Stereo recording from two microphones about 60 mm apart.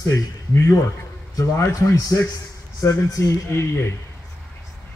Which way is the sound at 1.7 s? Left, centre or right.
Left.